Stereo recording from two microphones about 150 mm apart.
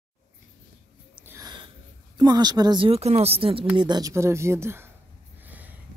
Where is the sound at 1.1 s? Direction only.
15° right (ahead or behind).